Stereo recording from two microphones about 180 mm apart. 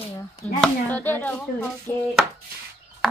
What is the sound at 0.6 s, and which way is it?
A woman's voice, 10° left (ahead or behind).